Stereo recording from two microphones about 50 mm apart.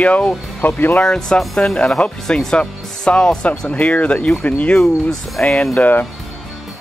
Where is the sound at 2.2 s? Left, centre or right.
Centre.